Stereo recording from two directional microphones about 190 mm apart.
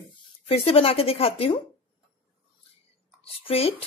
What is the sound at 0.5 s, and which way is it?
A woman's voice, 30° left (ahead or behind).